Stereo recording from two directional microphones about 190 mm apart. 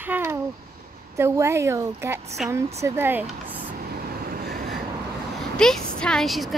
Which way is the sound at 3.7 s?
50° right (ahead or behind).